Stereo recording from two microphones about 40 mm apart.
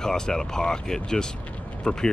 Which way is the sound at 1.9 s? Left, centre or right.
Left.